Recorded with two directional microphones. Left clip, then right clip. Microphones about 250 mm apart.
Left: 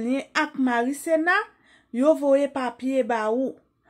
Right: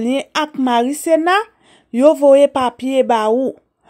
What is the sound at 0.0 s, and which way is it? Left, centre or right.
A woman's voice, right.